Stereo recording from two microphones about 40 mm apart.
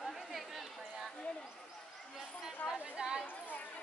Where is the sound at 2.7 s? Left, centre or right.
Centre.